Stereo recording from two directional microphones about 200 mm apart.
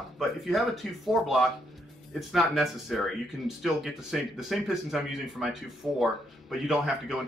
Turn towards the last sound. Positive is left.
turn(degrees=0)  # may be behind; listen again after turning